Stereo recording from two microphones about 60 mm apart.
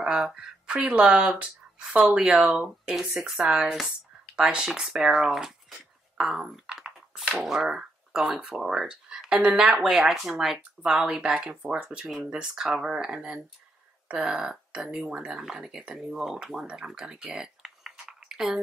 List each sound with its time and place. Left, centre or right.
0.0 s speech: centre
15.9 s speech: centre
16.6 s typing: centre